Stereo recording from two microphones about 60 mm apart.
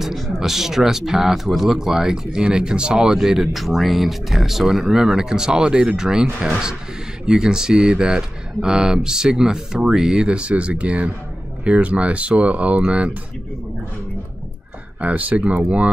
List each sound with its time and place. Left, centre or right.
0.0 s speech: centre
7.2 s speech: centre
15.0 s speech: right